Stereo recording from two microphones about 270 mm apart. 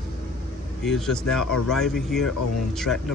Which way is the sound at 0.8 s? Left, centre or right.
Centre.